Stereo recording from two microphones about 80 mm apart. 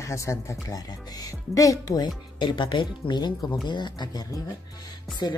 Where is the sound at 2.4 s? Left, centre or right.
Left.